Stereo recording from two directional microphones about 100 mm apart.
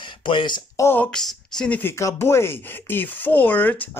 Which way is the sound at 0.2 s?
55° left (ahead or behind).